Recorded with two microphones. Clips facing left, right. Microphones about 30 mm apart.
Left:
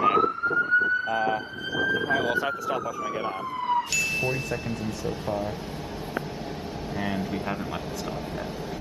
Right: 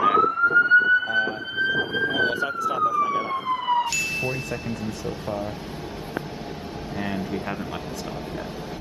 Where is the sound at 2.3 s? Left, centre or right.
Centre.